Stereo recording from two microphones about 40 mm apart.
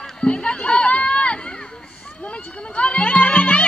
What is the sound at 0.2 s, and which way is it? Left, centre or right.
Run, left.